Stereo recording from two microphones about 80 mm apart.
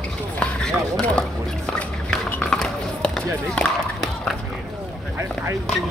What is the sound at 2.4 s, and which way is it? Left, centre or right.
Music, centre.